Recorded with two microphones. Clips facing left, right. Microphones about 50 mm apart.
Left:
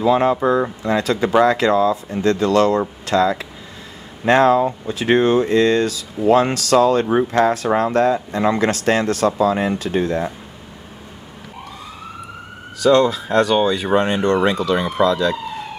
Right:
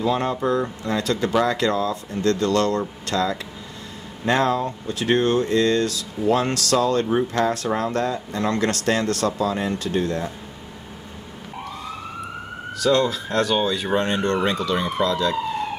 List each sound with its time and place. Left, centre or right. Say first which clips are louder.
0.0 s speech: left 6 dB; centre
7.1 s speech: left 5 dB; centre
7.4 s speech: left 5 dB; centre
12.7 s speech: left 6 dB; centre